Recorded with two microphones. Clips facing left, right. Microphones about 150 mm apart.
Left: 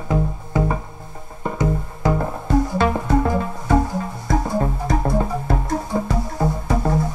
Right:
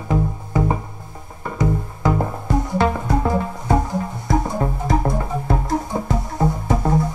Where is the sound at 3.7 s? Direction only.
20° right (ahead or behind).